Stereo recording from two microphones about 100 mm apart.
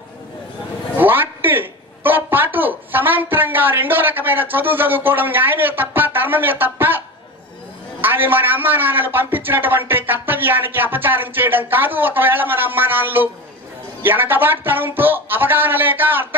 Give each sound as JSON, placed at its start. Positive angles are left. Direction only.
{"t": 0.9, "sound": "speech", "side_deg": -20}
{"t": 8.0, "sound": "a man's voice", "side_deg": -20}